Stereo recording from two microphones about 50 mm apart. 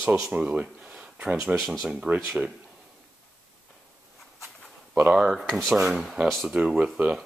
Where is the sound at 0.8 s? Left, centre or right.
Right.